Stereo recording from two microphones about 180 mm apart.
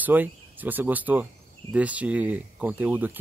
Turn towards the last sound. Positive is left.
turn(degrees=-10)  # may be behind; listen again after turning